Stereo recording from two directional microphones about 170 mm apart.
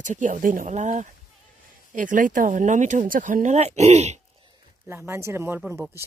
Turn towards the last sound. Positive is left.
turn(degrees=-10)  # may be behind; listen again after turning